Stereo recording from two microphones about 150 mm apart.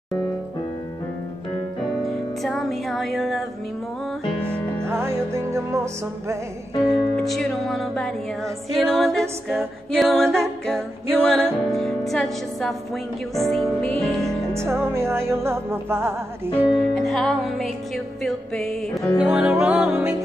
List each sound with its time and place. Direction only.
2.0 s music: centre (ahead or behind)
4.8 s music: 15° right (ahead or behind)
6.9 s music: centre (ahead or behind)
14.5 s music: 15° right (ahead or behind)
16.5 s music: centre (ahead or behind)